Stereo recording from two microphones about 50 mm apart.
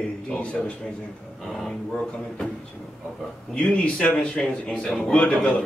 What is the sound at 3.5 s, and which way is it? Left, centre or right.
Speech, left.